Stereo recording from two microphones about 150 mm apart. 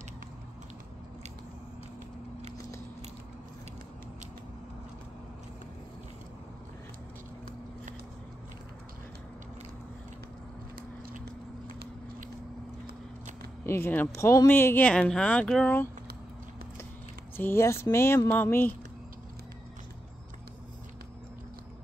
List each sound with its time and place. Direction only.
13.7 s speech: 15° left (ahead or behind)
17.4 s speech: 15° left (ahead or behind)